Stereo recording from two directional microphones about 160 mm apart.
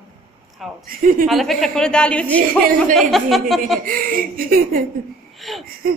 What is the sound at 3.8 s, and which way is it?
Speech, 60° right (ahead or behind).